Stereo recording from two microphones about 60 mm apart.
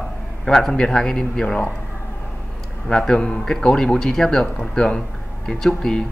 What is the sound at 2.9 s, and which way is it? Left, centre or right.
A man's voice, centre.